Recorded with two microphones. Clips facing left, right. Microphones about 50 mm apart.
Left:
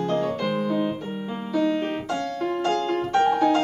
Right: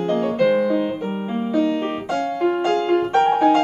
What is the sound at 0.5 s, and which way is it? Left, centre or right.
Music, right.